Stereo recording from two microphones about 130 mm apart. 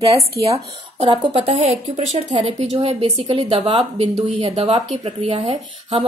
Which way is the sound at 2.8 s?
45° right (ahead or behind).